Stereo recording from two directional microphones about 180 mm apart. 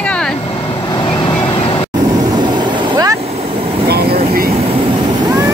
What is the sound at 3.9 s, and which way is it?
Train, 60° right (ahead or behind).